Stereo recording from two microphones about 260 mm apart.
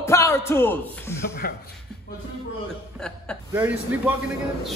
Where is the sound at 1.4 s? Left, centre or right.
Left.